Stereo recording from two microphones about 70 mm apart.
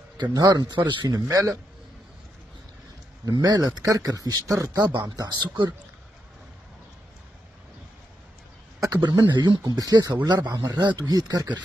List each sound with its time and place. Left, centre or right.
0.2 s speech: right
1.1 s a man's voice: right
3.3 s speech: right
4.7 s speech: right
8.8 s speech: right